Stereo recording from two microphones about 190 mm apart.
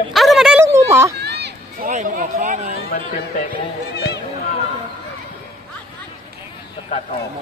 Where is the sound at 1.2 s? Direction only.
60° right (ahead or behind).